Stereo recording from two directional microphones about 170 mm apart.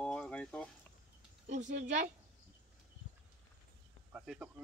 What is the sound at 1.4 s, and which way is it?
Speech, 45° right (ahead or behind).